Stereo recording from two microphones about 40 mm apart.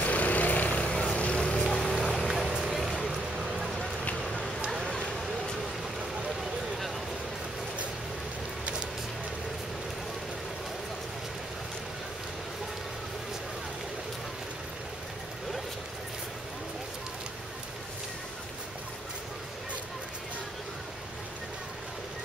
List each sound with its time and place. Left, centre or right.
0.0 s vehicle: left
1.1 s vehicle: left
1.6 s boat: centre
2.0 s vehicle: centre
2.6 s a sound: centre